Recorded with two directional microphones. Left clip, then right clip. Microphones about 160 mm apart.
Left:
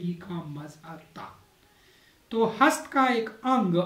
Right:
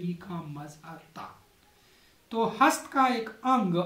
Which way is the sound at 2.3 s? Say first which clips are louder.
Left 2 dB; 5° right (ahead or behind).